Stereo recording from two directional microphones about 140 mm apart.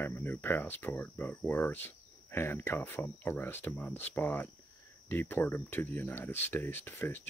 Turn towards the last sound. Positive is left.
turn(degrees=15)  # may be behind; listen again after turning